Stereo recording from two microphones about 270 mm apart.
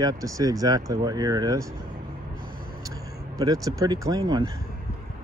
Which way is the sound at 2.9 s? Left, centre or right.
Centre.